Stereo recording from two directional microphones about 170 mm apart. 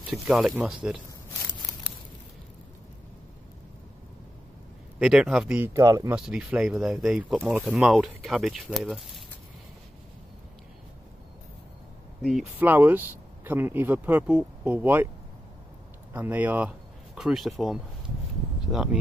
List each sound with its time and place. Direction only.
0.1 s speech: centre (ahead or behind)
4.9 s speech: 5° right (ahead or behind)
5.7 s speech: 20° right (ahead or behind)
6.1 s speech: 5° right (ahead or behind)
12.2 s speech: centre (ahead or behind)
12.5 s speech: 10° right (ahead or behind)
16.1 s speech: 10° right (ahead or behind)